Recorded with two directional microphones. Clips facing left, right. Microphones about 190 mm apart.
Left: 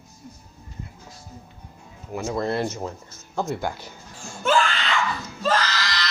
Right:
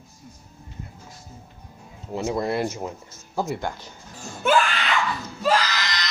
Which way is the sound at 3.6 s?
10° left (ahead or behind).